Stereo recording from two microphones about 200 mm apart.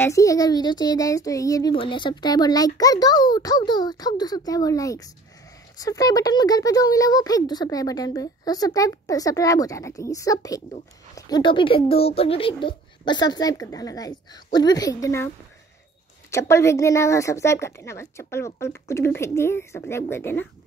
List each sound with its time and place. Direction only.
0.0 s a child's voice: 15° left (ahead or behind)